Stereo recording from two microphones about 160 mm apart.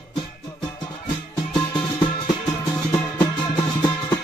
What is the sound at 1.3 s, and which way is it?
Music, 30° left (ahead or behind).